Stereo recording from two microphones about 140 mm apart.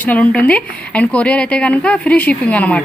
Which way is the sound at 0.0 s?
10° left (ahead or behind).